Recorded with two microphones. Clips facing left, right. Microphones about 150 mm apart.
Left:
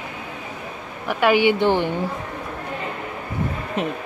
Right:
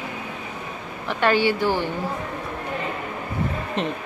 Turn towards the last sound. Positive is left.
turn(degrees=10)  # may be behind; listen again after turning